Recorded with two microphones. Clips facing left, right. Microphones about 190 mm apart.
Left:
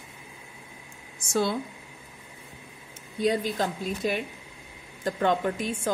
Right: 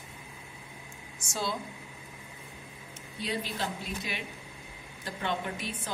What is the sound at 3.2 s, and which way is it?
A woman's voice, 45° left (ahead or behind).